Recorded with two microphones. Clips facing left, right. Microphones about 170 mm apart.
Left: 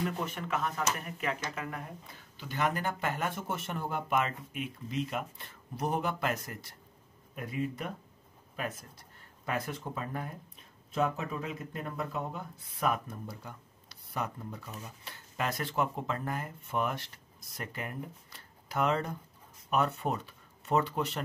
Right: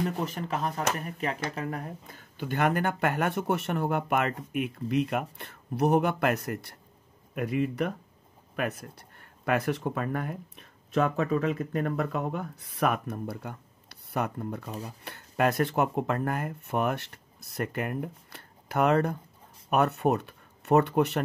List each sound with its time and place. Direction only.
0.2 s speech: 35° right (ahead or behind); by 6.8 s 65° right (ahead or behind)
7.3 s speech: 75° right (ahead or behind)